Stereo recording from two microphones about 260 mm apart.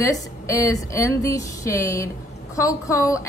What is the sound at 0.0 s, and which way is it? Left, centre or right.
A woman's voice, centre.